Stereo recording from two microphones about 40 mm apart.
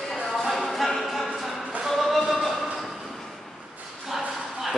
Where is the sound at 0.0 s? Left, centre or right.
Centre.